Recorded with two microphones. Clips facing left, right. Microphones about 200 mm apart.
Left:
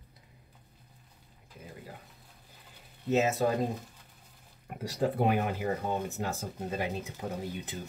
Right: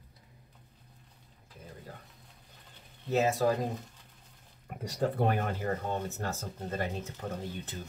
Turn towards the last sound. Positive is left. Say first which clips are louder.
# left 2 dB
turn(degrees=10)  # may be behind; listen again after turning